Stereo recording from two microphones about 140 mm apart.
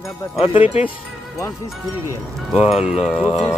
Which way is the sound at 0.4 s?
40° left (ahead or behind).